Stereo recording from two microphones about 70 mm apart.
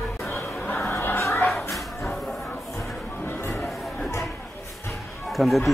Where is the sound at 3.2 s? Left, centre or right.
Left.